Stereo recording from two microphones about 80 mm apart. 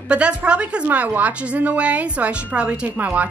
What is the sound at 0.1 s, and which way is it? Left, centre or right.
A woman's voice, centre.